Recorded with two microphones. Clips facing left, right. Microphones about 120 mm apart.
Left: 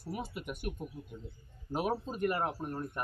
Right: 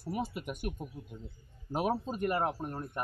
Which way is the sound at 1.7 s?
25° right (ahead or behind).